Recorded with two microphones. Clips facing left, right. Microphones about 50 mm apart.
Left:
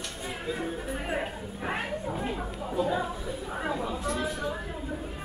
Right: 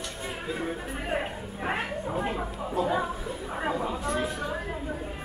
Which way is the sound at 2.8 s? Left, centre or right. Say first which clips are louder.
Right 1 dB; right.